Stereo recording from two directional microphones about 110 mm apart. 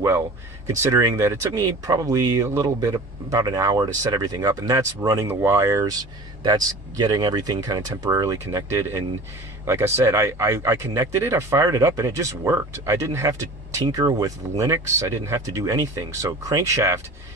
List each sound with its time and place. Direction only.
0.7 s speech: 30° right (ahead or behind)